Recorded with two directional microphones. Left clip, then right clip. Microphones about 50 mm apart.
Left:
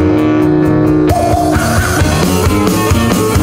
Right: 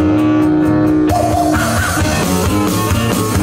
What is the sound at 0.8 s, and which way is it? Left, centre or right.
Music, left.